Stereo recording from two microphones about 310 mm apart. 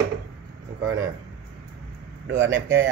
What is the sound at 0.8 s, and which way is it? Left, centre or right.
Speech, centre.